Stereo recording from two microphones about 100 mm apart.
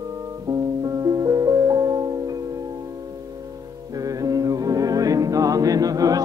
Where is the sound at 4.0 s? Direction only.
35° right (ahead or behind).